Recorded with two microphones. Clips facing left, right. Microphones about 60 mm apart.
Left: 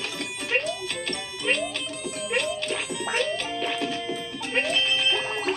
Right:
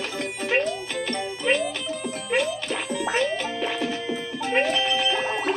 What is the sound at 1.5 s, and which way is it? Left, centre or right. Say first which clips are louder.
Music: right 3 dB; centre.